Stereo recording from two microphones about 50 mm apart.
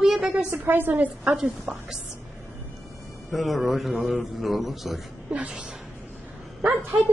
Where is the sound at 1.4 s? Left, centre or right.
Centre.